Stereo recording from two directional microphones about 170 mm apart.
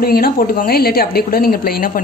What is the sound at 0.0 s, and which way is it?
A woman's voice, 60° left (ahead or behind).